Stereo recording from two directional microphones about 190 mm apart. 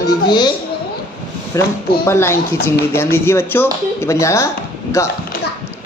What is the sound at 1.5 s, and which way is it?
Speech, 15° left (ahead or behind).